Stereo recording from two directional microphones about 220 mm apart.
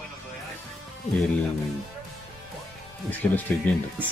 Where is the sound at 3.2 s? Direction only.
5° left (ahead or behind).